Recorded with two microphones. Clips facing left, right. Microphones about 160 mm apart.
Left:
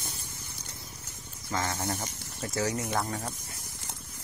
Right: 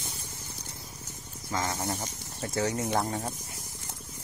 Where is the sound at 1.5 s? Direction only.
15° right (ahead or behind).